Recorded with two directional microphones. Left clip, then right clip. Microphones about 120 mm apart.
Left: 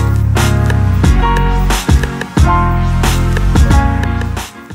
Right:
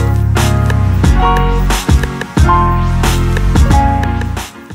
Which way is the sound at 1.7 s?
Centre (ahead or behind).